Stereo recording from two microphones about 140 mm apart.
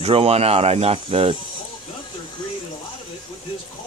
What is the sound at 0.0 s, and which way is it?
Speech, 45° right (ahead or behind).